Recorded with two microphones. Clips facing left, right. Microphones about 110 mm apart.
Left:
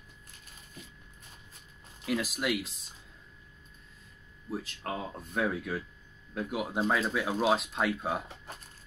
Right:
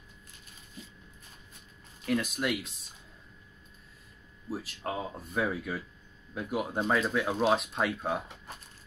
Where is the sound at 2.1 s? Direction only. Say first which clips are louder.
Right 1 dB; 5° left (ahead or behind).